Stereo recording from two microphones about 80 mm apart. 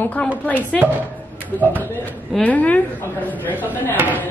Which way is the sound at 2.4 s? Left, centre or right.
Centre.